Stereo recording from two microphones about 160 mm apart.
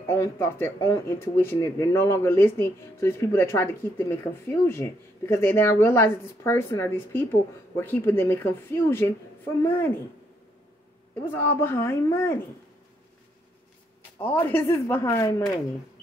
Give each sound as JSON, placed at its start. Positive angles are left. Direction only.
{"t": 0.0, "sound": "speech", "side_deg": 15}
{"t": 11.2, "sound": "speech", "side_deg": 10}
{"t": 14.1, "sound": "speech", "side_deg": 10}